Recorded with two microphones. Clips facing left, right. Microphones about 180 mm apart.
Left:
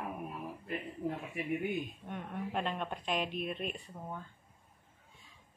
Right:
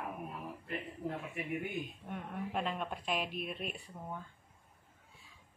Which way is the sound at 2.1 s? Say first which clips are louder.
Left 1 dB; 5° right (ahead or behind).